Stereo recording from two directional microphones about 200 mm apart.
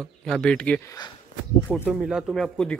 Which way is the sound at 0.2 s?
5° left (ahead or behind).